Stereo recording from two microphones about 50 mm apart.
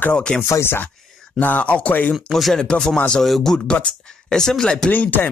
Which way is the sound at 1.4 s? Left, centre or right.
Left.